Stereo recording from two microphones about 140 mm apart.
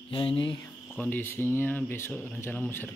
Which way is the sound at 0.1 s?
40° left (ahead or behind).